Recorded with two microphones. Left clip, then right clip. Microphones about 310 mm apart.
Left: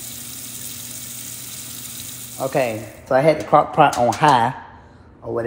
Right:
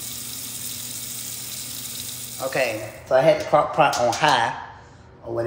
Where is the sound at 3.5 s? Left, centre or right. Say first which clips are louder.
Left 4 dB; centre.